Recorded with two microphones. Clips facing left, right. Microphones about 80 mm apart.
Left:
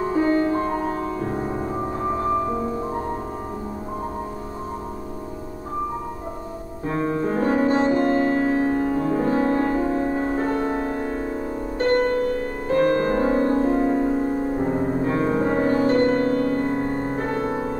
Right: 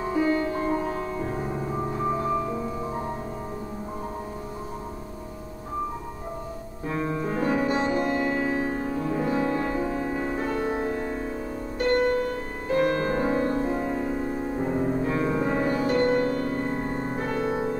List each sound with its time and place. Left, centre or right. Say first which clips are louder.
0.0 s music: left 4 dB; left
6.9 s music: left 5 dB; left